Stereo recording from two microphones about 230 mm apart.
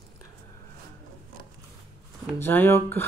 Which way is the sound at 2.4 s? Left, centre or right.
Centre.